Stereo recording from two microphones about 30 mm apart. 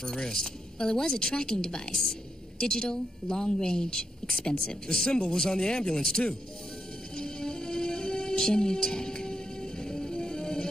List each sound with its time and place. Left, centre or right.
0.2 s a woman's voice: left
7.2 s music: left